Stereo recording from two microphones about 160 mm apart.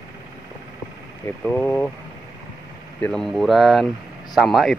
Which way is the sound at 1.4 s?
10° left (ahead or behind).